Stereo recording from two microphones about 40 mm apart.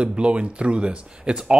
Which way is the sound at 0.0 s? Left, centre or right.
Right.